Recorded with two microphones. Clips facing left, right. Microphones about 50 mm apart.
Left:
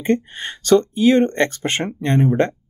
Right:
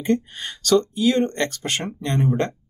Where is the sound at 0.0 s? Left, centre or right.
Left.